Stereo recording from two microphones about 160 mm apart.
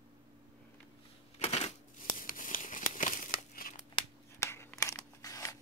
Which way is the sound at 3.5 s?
60° left (ahead or behind).